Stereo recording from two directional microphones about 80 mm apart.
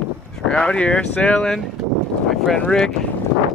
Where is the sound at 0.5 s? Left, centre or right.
Centre.